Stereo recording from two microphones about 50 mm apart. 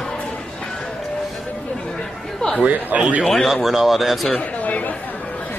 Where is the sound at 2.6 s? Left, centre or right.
Right.